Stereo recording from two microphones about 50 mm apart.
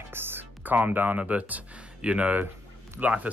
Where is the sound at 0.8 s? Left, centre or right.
Right.